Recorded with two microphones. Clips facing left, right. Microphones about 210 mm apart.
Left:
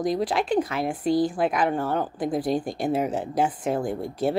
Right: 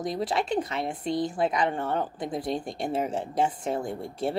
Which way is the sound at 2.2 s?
25° right (ahead or behind).